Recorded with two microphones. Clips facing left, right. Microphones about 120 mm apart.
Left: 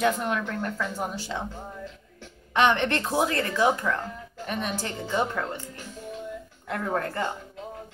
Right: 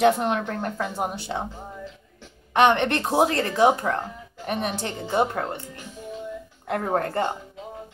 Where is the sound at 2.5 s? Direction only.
55° right (ahead or behind).